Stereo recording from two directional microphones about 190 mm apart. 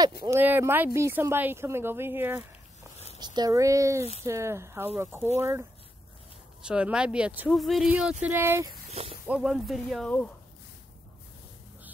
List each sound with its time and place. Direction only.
0.2 s speech: 10° right (ahead or behind)
3.2 s speech: 20° right (ahead or behind)
6.6 s speech: 5° right (ahead or behind)
8.9 s snake: 30° right (ahead or behind)
9.3 s speech: 5° right (ahead or behind)